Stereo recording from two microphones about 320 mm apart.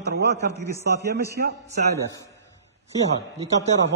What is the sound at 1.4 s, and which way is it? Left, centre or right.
Speech, right.